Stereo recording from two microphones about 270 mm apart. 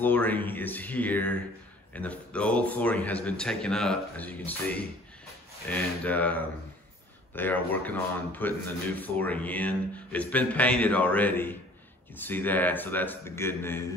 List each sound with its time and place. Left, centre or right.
0.0 s a man's voice: centre